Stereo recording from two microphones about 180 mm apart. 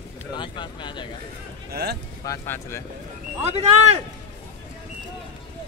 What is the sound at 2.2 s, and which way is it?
Speech, 15° left (ahead or behind).